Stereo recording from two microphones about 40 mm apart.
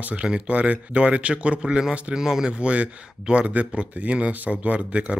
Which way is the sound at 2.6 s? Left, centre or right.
Right.